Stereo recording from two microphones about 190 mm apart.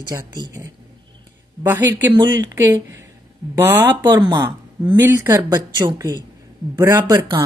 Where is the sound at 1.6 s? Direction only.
10° right (ahead or behind).